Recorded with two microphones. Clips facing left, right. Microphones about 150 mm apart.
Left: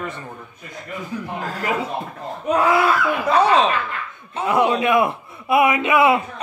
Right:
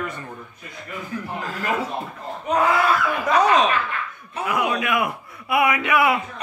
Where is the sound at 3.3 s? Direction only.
30° left (ahead or behind).